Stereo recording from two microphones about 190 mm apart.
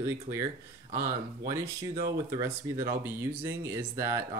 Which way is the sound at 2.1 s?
15° right (ahead or behind).